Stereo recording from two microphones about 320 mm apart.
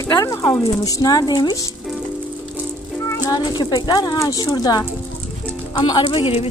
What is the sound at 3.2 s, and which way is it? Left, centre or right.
Speech, centre.